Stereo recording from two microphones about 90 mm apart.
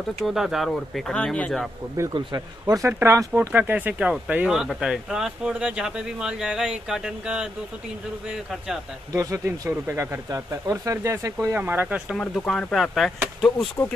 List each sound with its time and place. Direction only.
0.0 s speech: centre (ahead or behind)
2.1 s speech: 45° right (ahead or behind)
2.9 s speech: 25° right (ahead or behind); by 8.8 s 5° right (ahead or behind)
9.1 s speech: 35° right (ahead or behind)
11.5 s speech: 20° right (ahead or behind)
12.2 s speech: 10° left (ahead or behind)
13.8 s speech: 25° left (ahead or behind)